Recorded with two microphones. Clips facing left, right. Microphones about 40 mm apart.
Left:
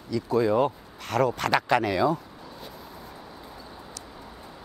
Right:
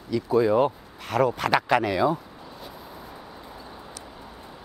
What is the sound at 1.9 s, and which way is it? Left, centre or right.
Speech, right.